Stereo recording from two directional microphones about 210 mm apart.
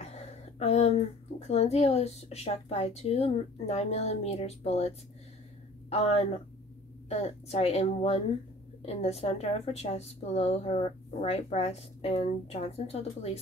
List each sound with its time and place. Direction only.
0.0 s a woman's voice: 30° left (ahead or behind)